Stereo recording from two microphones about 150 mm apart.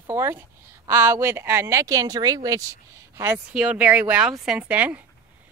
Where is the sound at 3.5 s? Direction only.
5° right (ahead or behind).